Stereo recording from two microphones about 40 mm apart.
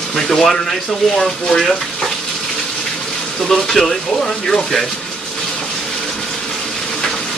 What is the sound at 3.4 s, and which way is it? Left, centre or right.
Speech, centre.